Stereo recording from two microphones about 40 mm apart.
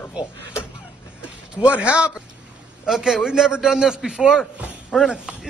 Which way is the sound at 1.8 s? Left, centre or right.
Right.